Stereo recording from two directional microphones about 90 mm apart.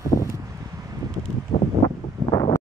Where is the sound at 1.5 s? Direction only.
80° left.